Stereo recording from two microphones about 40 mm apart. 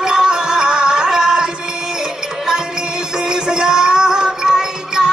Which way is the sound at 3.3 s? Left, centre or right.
Centre.